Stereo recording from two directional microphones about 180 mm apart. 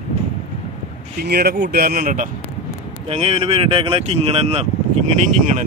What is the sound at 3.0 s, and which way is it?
Speech, 35° right (ahead or behind).